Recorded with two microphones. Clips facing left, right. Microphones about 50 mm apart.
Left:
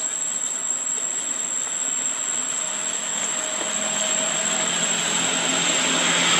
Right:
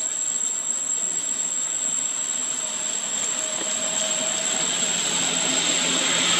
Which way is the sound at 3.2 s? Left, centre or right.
Left.